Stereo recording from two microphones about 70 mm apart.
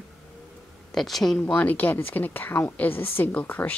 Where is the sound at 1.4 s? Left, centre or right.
Left.